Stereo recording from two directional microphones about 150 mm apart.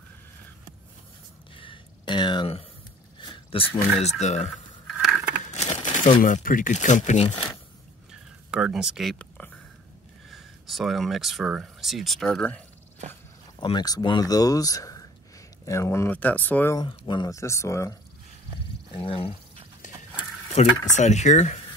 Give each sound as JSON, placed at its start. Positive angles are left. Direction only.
{"t": 1.5, "sound": "a sound", "side_deg": 35}
{"t": 3.2, "sound": "speech", "side_deg": 35}
{"t": 8.1, "sound": "a sound", "side_deg": -5}
{"t": 10.3, "sound": "speech", "side_deg": 0}
{"t": 13.6, "sound": "speech", "side_deg": 30}
{"t": 16.7, "sound": "speech", "side_deg": 30}
{"t": 18.9, "sound": "speech", "side_deg": 35}
{"t": 19.8, "sound": "horse", "side_deg": 55}
{"t": 20.6, "sound": "speech", "side_deg": 45}